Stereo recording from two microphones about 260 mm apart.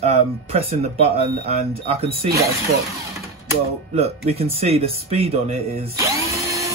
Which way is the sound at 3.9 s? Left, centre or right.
Right.